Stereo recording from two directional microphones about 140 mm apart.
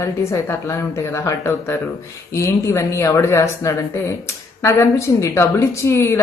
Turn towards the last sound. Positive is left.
turn(degrees=20)  # may be behind; listen again after turning